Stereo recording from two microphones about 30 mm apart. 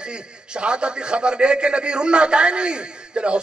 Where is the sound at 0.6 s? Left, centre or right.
Right.